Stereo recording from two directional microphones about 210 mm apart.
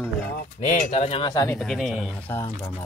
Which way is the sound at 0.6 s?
35° left (ahead or behind).